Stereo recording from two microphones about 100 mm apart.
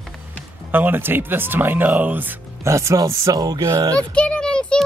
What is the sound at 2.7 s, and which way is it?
Speech, 30° right (ahead or behind).